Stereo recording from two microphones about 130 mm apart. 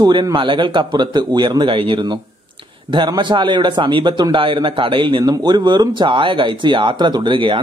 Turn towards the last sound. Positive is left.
turn(degrees=-40)  # may be behind; listen again after turning